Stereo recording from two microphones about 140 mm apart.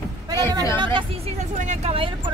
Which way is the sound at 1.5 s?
60° right (ahead or behind).